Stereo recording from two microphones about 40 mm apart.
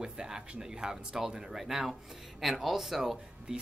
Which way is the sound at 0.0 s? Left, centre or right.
Centre.